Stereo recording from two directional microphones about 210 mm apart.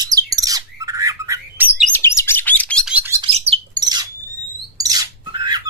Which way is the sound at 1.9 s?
10° left (ahead or behind).